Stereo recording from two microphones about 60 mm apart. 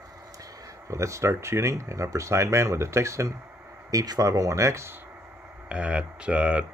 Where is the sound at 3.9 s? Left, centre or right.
Right.